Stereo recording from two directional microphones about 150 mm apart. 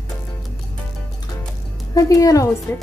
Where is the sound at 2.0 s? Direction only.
25° left (ahead or behind).